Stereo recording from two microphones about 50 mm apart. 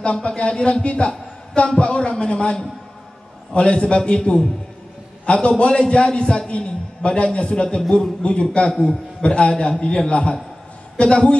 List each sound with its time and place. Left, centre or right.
0.0 s a man's voice: left